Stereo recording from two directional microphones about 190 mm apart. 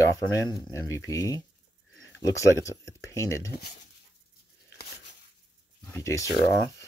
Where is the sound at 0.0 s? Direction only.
15° left (ahead or behind).